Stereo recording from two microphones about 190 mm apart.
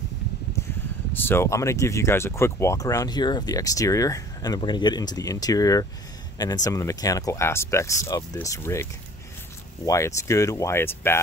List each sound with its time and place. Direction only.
1.1 s speech: 10° left (ahead or behind)
9.8 s speech: 15° left (ahead or behind)